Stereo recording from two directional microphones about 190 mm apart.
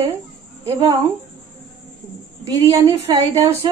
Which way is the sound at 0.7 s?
20° right (ahead or behind).